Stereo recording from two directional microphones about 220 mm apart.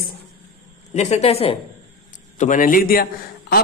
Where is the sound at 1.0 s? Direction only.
30° left (ahead or behind).